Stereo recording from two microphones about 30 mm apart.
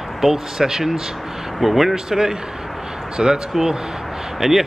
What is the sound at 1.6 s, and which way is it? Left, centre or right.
Speech, centre.